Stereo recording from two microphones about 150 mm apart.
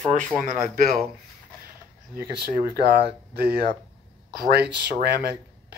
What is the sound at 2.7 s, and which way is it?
Speech, 90° right.